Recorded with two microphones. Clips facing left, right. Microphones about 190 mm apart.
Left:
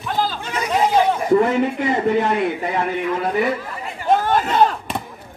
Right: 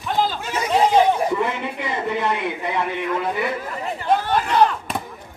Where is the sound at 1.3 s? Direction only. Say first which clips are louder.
Left 8 dB; 40° left (ahead or behind).